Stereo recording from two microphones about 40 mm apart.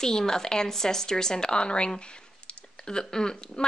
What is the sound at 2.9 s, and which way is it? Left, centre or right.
Speech, centre.